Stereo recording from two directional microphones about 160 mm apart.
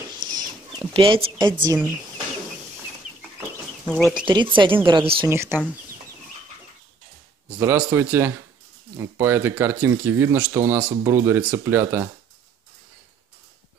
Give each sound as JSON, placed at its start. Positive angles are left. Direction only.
{"t": 0.2, "sound": "chicken", "side_deg": -25}
{"t": 3.8, "sound": "speech", "side_deg": 5}
{"t": 4.3, "sound": "speech", "side_deg": -30}
{"t": 5.2, "sound": "speech", "side_deg": -15}
{"t": 7.4, "sound": "speech", "side_deg": -10}